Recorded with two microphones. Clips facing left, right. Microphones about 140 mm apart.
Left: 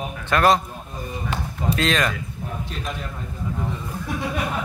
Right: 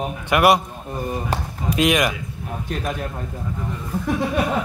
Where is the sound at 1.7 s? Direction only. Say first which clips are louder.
Right 5 dB; 15° right (ahead or behind).